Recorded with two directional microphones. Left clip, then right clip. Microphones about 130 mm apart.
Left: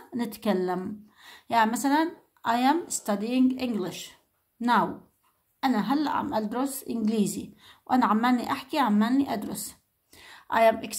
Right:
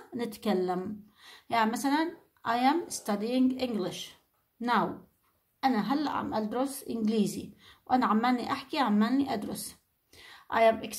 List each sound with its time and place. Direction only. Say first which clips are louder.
0.1 s a woman's voice: left 3 dB; 35° left (ahead or behind)